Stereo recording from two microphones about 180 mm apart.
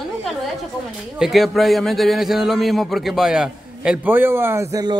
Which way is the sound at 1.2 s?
Centre (ahead or behind).